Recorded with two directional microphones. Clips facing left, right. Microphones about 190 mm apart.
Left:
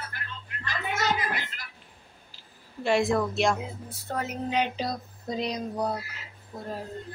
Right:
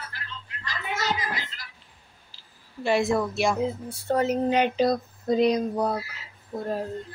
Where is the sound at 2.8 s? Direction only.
Centre (ahead or behind).